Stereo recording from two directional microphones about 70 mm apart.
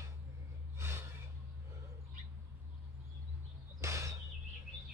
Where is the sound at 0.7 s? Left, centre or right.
Right.